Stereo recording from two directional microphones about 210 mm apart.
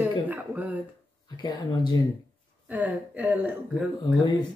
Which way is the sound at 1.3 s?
20° left (ahead or behind).